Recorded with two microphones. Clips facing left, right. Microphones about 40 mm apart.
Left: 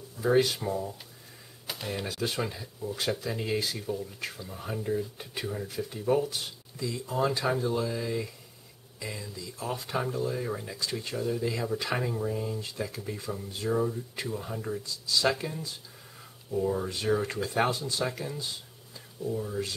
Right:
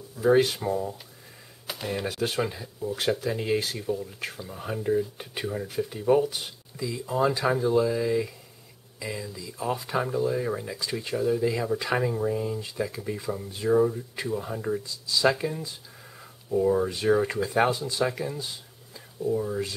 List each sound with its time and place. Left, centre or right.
0.4 s speech: centre
2.1 s speech: right